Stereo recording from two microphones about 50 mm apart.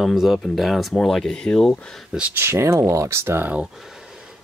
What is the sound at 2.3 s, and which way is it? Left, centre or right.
Speech, right.